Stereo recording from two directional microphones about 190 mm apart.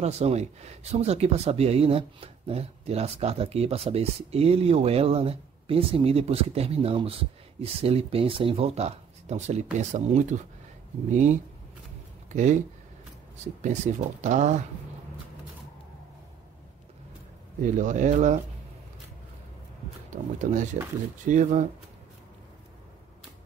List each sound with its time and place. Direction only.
0.0 s speech: 35° right (ahead or behind)
13.6 s speech: 40° right (ahead or behind)
17.6 s speech: 45° right (ahead or behind)
20.1 s speech: 40° right (ahead or behind)